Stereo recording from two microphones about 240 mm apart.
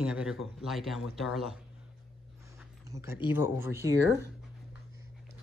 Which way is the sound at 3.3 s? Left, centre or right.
Centre.